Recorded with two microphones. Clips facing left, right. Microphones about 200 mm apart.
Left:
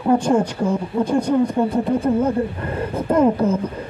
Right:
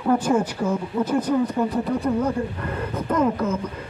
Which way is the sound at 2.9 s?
30° left (ahead or behind).